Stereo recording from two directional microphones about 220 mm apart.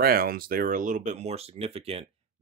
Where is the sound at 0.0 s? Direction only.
45° right (ahead or behind).